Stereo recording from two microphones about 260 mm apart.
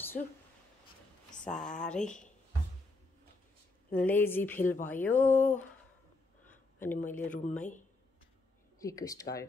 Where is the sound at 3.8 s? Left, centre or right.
Centre.